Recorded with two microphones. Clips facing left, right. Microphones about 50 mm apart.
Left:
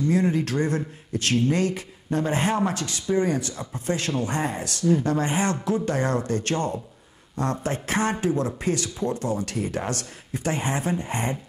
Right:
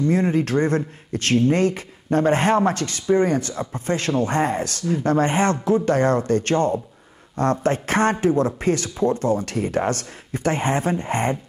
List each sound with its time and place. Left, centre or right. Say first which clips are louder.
0.1 s speech: right 3 dB; right